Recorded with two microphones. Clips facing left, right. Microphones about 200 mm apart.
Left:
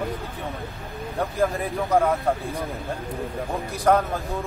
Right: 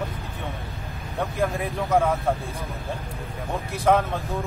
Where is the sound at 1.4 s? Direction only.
Centre (ahead or behind).